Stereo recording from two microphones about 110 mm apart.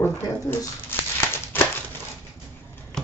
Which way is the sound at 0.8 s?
20° left (ahead or behind).